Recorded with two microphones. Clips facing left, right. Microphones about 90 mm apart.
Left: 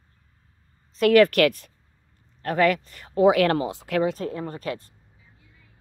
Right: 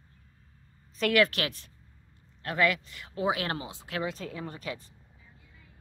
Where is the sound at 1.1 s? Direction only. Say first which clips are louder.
Left 9 dB; 50° left (ahead or behind).